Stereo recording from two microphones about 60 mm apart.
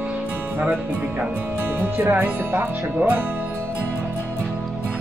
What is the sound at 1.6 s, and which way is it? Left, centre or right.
Speech, right.